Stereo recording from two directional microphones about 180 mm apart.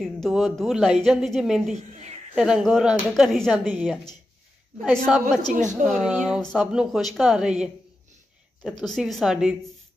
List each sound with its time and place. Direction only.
0.0 s a woman's voice: centre (ahead or behind)
1.8 s speech: 40° right (ahead or behind)
2.3 s a woman's voice: 5° right (ahead or behind)
5.5 s speech: 40° right (ahead or behind)
5.9 s a woman's voice: 5° right (ahead or behind)
8.8 s a woman's voice: centre (ahead or behind)